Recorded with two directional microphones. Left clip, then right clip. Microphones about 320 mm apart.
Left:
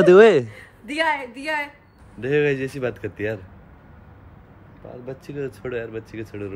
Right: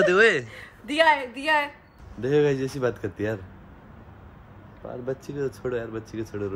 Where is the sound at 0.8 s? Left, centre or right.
Centre.